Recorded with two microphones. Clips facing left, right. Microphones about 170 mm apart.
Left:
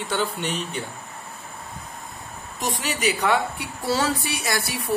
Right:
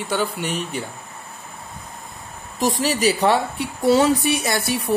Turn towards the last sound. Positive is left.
turn(degrees=-25)  # may be behind; listen again after turning